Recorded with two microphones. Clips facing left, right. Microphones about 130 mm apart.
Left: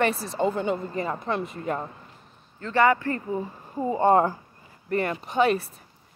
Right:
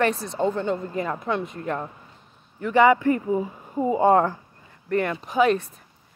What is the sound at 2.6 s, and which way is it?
Speech, 15° right (ahead or behind).